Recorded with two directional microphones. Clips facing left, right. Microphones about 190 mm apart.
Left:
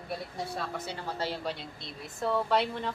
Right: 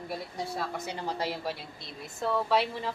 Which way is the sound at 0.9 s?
15° right (ahead or behind).